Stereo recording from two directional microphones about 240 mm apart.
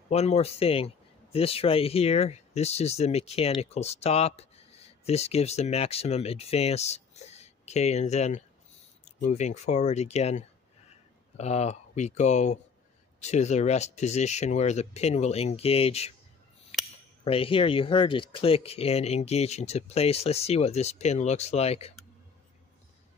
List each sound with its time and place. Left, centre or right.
0.1 s speech: left
17.2 s speech: left